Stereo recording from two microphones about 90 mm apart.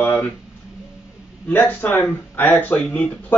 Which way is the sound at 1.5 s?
20° left (ahead or behind).